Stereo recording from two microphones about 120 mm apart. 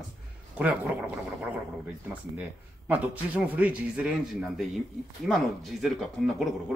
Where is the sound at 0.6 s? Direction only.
10° right (ahead or behind).